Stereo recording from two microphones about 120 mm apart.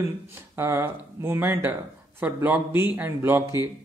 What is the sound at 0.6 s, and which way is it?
Speech, 20° right (ahead or behind).